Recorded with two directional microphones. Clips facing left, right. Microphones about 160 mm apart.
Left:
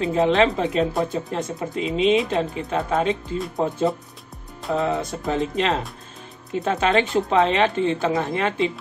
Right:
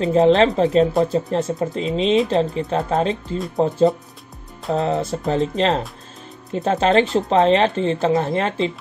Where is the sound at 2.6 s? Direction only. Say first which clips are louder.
Right 2 dB; 25° right (ahead or behind).